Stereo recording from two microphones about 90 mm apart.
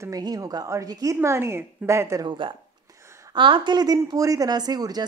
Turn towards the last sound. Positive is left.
turn(degrees=-45)  # may be behind; listen again after turning